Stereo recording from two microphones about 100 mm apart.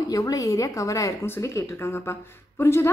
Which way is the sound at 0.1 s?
35° left (ahead or behind).